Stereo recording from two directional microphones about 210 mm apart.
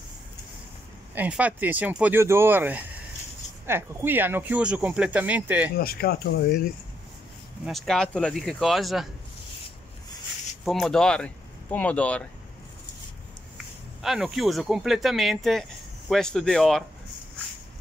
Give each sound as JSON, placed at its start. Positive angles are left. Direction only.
{"t": 1.1, "sound": "speech", "side_deg": -5}
{"t": 5.8, "sound": "speech", "side_deg": 45}
{"t": 7.6, "sound": "speech", "side_deg": 0}
{"t": 10.6, "sound": "speech", "side_deg": 0}
{"t": 14.0, "sound": "speech", "side_deg": 0}